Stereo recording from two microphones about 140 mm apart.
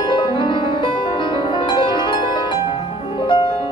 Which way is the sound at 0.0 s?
35° left (ahead or behind).